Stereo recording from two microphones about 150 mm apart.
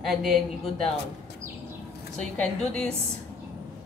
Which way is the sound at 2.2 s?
5° left (ahead or behind).